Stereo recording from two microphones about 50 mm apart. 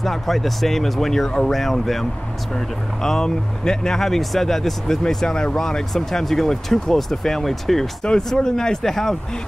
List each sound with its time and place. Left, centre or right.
0.0 s speech: centre
8.0 s speech: centre